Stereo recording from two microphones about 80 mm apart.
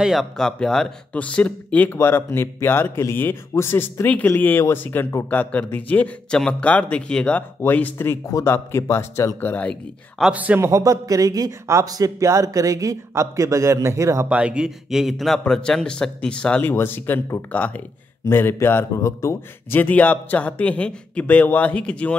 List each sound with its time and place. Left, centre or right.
0.0 s speech: centre
1.1 s speech: centre
2.0 s a man's voice: left; by 7.4 s centre
7.6 s a man's voice: left
8.3 s speech: left
9.4 s a man's voice: left
10.3 s speech: centre
10.6 s speech: right
14.3 s a man's voice: centre
16.7 s a man's voice: left
19.7 s a man's voice: left